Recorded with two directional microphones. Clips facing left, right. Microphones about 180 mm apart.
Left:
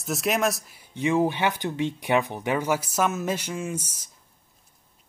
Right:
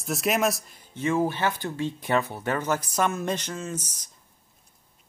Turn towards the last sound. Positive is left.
turn(degrees=10)  # may be behind; listen again after turning